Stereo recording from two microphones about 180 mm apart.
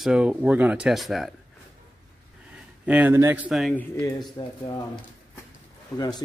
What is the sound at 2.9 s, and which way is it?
Speech, 10° right (ahead or behind).